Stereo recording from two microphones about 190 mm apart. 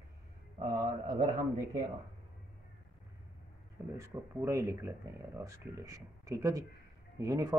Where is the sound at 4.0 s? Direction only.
15° right (ahead or behind).